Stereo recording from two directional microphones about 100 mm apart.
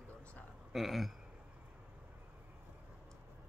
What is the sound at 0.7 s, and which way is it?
Speech, centre (ahead or behind).